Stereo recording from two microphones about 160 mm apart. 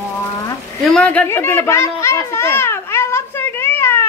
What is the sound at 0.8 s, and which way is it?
Children playing, 5° left (ahead or behind).